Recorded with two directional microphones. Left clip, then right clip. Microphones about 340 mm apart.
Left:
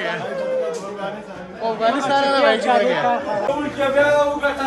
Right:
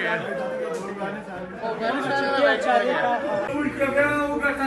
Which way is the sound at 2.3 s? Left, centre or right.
Left.